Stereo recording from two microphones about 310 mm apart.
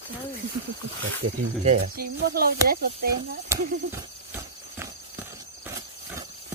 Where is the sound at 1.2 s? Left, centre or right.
Right.